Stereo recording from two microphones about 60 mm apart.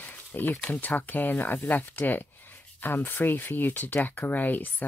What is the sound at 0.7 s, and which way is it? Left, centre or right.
Speech, left.